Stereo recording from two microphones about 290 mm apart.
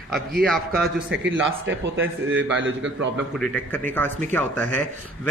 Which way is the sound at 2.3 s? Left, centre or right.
Right.